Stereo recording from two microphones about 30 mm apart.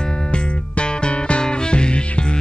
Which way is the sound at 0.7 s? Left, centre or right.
Left.